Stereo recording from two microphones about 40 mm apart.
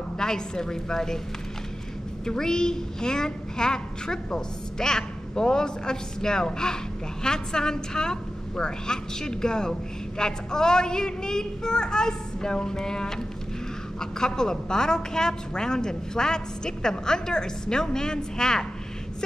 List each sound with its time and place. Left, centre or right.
0.2 s a woman's voice: centre
2.2 s a woman's voice: centre